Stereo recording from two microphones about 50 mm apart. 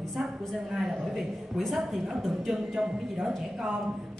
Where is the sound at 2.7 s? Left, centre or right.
Centre.